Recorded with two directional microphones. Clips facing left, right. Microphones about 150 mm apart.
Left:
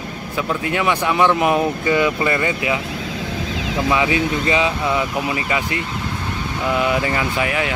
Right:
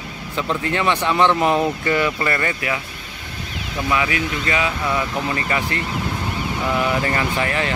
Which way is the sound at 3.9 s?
25° left (ahead or behind).